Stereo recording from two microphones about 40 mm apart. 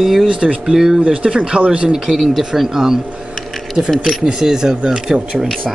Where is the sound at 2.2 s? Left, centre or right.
Centre.